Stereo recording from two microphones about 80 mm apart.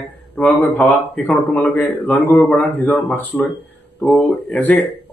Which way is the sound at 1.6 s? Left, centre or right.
Centre.